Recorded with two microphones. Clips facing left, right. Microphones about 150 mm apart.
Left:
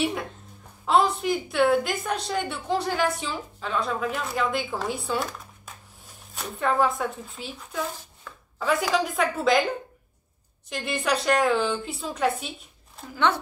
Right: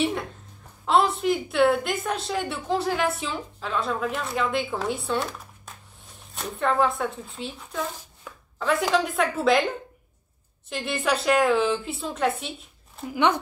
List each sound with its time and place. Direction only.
0.8 s a woman's voice: centre (ahead or behind)
6.3 s a woman's voice: 5° left (ahead or behind)
10.7 s a woman's voice: centre (ahead or behind)
13.0 s speech: 15° right (ahead or behind)